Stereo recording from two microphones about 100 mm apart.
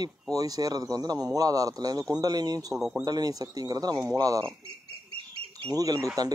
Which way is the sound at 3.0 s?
40° right (ahead or behind).